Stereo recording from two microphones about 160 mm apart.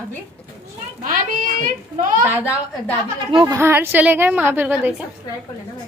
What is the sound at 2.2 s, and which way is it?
A woman's voice, 10° right (ahead or behind).